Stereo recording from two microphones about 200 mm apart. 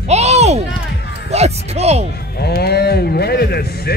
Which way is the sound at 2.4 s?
55° left (ahead or behind).